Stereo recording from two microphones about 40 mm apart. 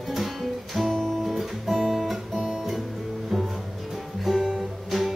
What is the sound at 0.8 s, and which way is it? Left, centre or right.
Music, centre.